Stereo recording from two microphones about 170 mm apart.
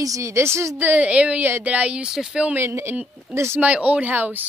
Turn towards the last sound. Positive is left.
turn(degrees=-10)  # may be behind; listen again after turning